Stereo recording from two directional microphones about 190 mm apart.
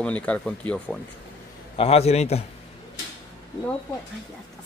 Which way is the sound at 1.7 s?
30° left (ahead or behind).